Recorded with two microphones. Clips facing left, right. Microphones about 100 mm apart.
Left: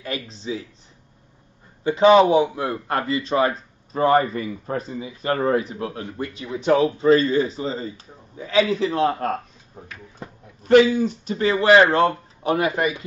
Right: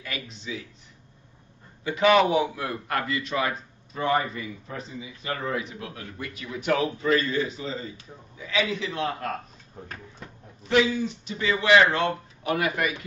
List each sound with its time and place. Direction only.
0.0 s a man's voice: 30° left (ahead or behind)
1.9 s a man's voice: 30° left (ahead or behind)
10.6 s a man's voice: 45° left (ahead or behind); by 12.9 s 30° left (ahead or behind)